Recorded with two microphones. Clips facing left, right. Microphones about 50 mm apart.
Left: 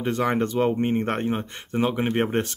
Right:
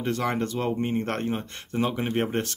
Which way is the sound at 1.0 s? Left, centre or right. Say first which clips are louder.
Left 3 dB; centre.